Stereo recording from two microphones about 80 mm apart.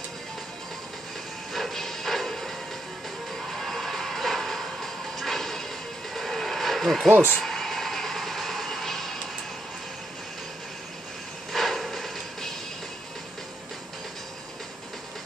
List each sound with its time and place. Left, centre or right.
1.5 s music: centre
6.1 s vehicle: centre
7.1 s speech: right
7.4 s vehicle: centre
11.5 s a sound: centre